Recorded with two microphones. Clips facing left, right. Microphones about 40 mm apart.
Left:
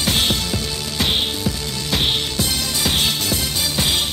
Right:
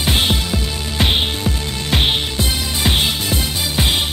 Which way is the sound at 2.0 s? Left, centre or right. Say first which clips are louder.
Right 2 dB; right.